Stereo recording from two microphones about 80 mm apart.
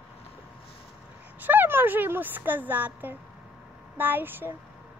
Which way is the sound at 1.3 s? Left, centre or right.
Right.